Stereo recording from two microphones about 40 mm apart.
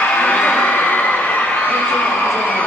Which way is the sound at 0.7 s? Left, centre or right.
Left.